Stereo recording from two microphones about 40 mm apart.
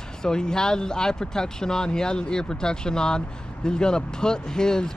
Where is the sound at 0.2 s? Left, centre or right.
Centre.